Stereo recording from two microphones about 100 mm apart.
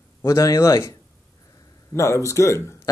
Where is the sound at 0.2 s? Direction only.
30° left (ahead or behind).